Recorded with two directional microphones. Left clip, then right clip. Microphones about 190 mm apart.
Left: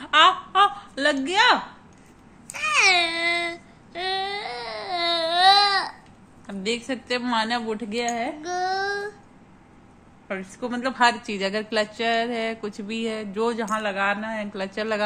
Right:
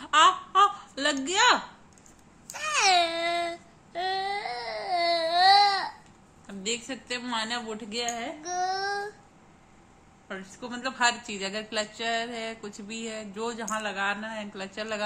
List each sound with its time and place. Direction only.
0.0 s a sound: centre (ahead or behind)
1.2 s speech: centre (ahead or behind)
2.5 s child singing: 35° right (ahead or behind); by 5.9 s 15° right (ahead or behind)
6.4 s a woman's voice: 30° left (ahead or behind)
8.4 s a sound: 5° right (ahead or behind)
10.2 s a woman's voice: 25° left (ahead or behind)